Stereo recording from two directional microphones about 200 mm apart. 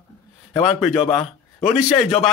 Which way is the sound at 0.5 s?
Centre (ahead or behind).